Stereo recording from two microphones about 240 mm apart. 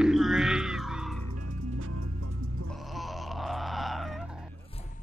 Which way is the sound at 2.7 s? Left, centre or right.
Centre.